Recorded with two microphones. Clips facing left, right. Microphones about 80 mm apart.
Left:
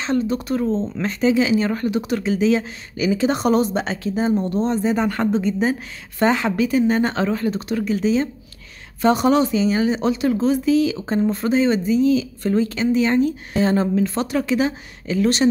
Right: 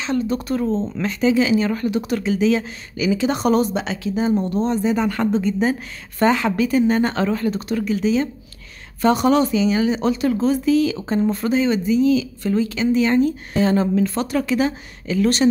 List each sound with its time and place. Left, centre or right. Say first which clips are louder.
0.3 s a woman's voice: even; centre
0.7 s speech: even; centre
1.0 s a woman's voice: even; left
3.8 s a woman's voice: even; left
12.9 s a woman's voice: right 1 dB; left